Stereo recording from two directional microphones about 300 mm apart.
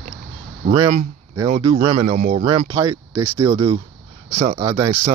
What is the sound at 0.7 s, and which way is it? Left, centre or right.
A man's voice, centre.